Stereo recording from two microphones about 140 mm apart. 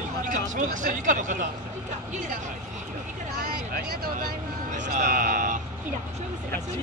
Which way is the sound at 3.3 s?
90° right.